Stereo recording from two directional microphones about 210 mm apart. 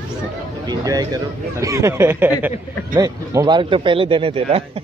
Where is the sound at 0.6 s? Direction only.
20° right (ahead or behind).